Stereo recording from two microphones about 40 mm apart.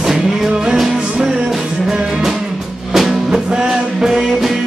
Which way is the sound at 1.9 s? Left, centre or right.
Centre.